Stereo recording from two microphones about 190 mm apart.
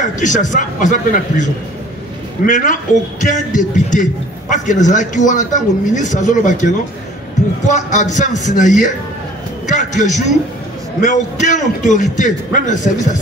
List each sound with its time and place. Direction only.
0.0 s a man's voice: 40° left (ahead or behind)